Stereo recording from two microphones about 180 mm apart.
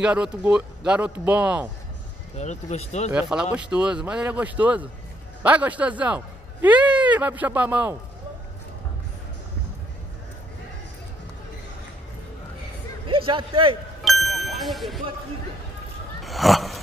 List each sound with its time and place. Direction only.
0.0 s speech: 5° right (ahead or behind)
2.3 s speech: 40° left (ahead or behind)
3.1 s speech: 5° right (ahead or behind)
13.0 s a man's voice: 30° right (ahead or behind)
14.0 s ding: centre (ahead or behind)
16.2 s a sound: centre (ahead or behind)